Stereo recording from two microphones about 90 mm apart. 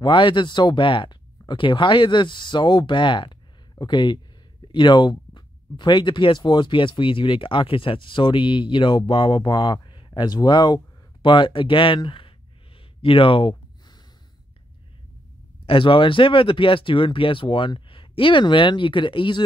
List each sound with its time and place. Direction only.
0.0 s speech: 65° left (ahead or behind)
15.6 s speech: 85° left; by 19.4 s 65° left (ahead or behind)